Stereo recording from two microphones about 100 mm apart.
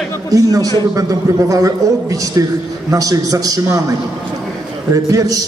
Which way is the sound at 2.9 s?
35° right (ahead or behind).